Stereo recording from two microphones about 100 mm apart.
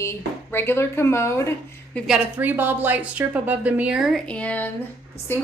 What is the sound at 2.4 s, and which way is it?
A woman's voice, 20° right (ahead or behind).